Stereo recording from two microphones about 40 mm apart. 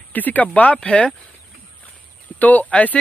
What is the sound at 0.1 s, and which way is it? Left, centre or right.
A man's voice, left.